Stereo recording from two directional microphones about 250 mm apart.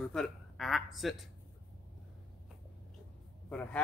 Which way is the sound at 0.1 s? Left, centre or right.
Centre.